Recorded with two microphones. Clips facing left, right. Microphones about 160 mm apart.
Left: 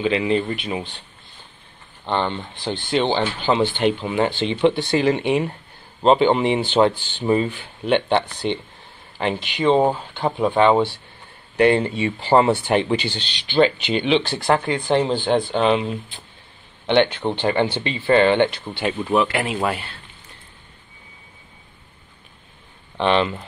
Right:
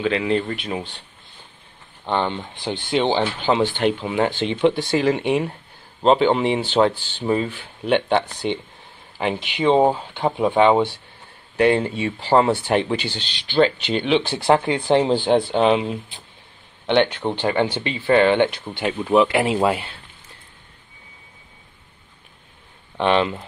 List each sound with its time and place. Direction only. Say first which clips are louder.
0.0 s speech: left 1 dB; 10° left (ahead or behind)
2.0 s speech: even; 10° right (ahead or behind)
11.5 s speech: left 1 dB; centre (ahead or behind)
14.2 s speech: right 2 dB; 20° right (ahead or behind)
15.1 s speech: right 2 dB; 5° right (ahead or behind)
19.1 s speech: right 5 dB; 20° right (ahead or behind)
22.9 s speech: even; 10° right (ahead or behind)